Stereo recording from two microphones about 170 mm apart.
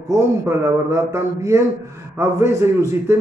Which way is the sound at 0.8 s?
15° right (ahead or behind).